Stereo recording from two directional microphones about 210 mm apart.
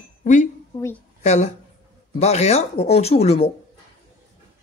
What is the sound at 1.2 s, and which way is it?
Speech, 30° left (ahead or behind).